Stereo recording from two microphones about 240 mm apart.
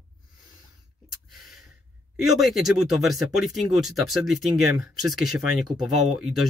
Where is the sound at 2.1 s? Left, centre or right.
Centre.